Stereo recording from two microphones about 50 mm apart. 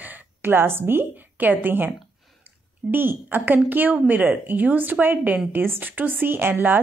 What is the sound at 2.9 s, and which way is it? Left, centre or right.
A woman's voice, right.